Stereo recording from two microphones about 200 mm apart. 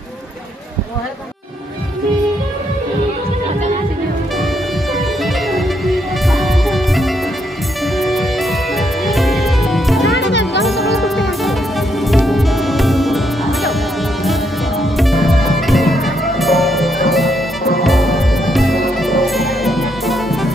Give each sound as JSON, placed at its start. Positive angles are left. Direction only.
{"t": 5.2, "sound": "music", "side_deg": 0}
{"t": 14.8, "sound": "music", "side_deg": 0}